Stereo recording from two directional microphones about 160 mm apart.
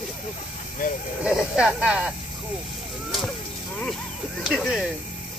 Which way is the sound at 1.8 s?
5° right (ahead or behind).